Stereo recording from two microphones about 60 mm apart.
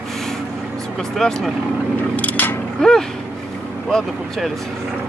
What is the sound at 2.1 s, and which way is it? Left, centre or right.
Speech, left.